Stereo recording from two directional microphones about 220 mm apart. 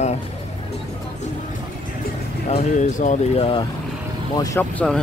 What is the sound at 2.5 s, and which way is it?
Speech, 35° left (ahead or behind).